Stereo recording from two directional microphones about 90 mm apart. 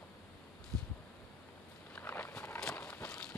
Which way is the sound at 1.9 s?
20° left (ahead or behind).